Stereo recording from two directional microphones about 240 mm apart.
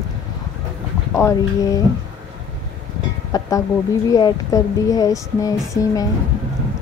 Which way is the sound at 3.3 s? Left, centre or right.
Centre.